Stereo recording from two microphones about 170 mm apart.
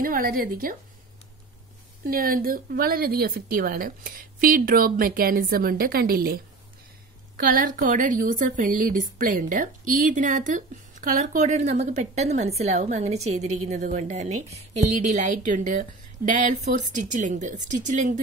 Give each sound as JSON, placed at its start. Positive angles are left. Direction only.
{"t": 0.0, "sound": "speech", "side_deg": -55}
{"t": 2.0, "sound": "a woman's voice", "side_deg": -60}